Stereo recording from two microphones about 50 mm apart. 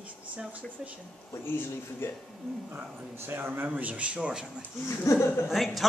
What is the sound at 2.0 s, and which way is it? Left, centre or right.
Speech, left.